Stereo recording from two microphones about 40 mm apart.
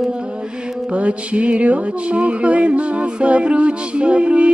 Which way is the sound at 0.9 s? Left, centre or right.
Right.